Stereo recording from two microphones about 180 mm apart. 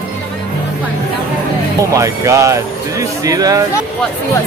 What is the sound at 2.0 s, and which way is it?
Speech, 15° right (ahead or behind).